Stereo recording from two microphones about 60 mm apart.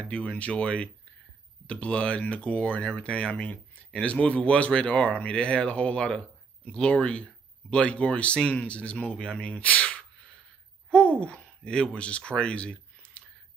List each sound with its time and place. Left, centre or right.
0.0 s speech: left